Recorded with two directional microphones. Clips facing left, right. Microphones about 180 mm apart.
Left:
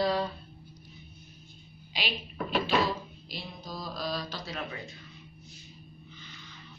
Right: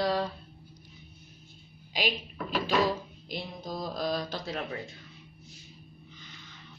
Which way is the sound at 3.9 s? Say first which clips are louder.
Right 3 dB; 50° right (ahead or behind).